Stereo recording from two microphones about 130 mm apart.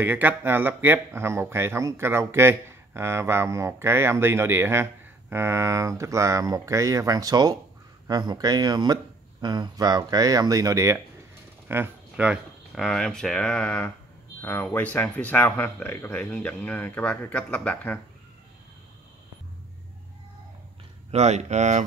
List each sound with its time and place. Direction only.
0.0 s speech: 15° right (ahead or behind); by 18.0 s 10° left (ahead or behind)
21.1 s speech: 60° right (ahead or behind)